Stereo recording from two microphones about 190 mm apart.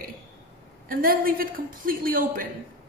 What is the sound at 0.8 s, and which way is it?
A man's voice, 50° right (ahead or behind).